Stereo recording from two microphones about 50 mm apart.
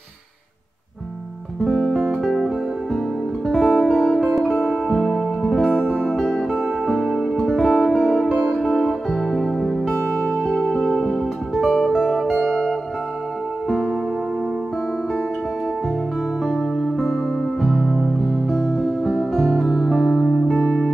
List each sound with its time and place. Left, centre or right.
1.8 s music: centre
8.0 s music: centre
9.9 s music: right
10.7 s music: centre
16.4 s music: centre